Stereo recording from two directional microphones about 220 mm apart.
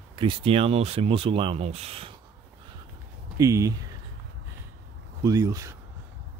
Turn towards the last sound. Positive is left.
turn(degrees=-15)  # may be behind; listen again after turning